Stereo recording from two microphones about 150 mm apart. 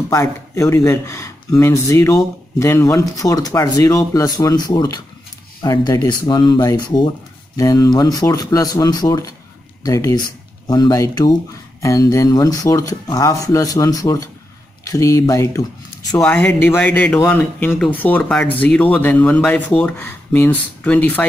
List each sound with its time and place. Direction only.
0.1 s speech: 20° left (ahead or behind)